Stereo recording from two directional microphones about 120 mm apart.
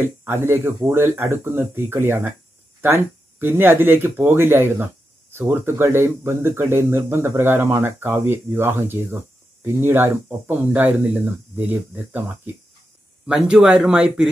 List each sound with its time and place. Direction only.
0.0 s speech: 20° right (ahead or behind)
13.3 s speech: 5° right (ahead or behind)